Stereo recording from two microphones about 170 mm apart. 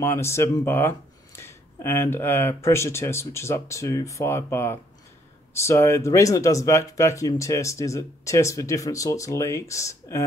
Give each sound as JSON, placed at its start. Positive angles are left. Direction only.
{"t": 0.0, "sound": "speech", "side_deg": 15}